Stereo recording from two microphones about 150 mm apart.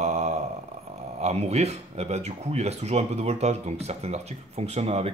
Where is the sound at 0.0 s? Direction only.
50° right (ahead or behind).